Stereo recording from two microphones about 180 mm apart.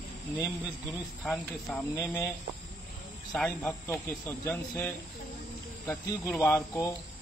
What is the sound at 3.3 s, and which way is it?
Speech, 10° left (ahead or behind).